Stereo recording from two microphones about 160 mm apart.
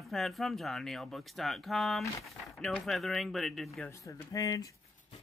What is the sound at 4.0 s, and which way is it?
Speech, 20° left (ahead or behind).